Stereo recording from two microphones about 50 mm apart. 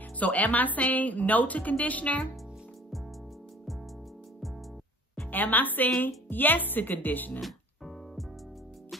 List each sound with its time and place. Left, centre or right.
0.2 s a woman's voice: left
5.3 s a woman's voice: left
7.3 s music: centre